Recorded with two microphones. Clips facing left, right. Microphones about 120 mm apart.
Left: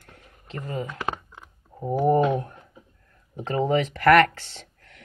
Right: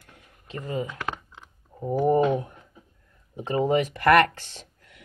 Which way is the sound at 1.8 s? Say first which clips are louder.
Even; 10° left (ahead or behind).